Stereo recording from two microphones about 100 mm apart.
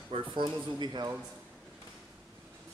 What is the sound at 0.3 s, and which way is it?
Speech, 45° right (ahead or behind).